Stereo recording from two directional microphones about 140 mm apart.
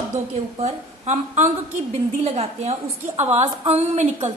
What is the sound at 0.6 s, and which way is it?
A woman's voice, 50° right (ahead or behind).